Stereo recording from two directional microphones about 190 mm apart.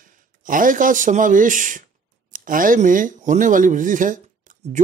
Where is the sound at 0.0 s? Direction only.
45° right (ahead or behind).